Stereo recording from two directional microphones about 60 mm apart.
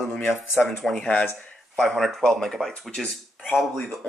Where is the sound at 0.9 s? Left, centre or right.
Left.